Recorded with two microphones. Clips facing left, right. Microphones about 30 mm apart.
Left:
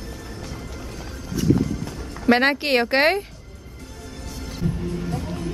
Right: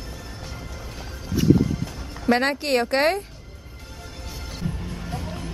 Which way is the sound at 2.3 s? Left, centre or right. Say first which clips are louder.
Left 3 dB; left.